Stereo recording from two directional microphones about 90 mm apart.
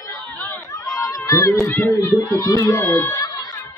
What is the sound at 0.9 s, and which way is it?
Speech, 40° left (ahead or behind).